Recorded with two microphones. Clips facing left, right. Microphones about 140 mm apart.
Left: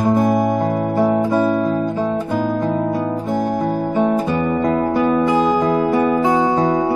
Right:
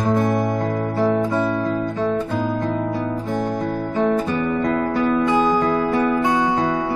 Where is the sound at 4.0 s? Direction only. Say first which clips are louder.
Left 1 dB; 15° left (ahead or behind).